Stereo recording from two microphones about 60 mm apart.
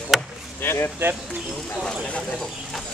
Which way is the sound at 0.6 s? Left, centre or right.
Left.